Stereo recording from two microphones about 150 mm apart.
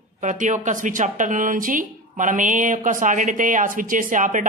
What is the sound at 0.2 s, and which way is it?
A woman's voice, 55° right (ahead or behind).